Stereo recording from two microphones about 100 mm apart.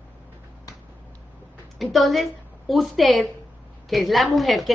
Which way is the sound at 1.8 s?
Centre (ahead or behind).